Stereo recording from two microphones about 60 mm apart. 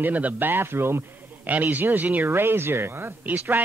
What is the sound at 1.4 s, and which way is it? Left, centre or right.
Speech, right.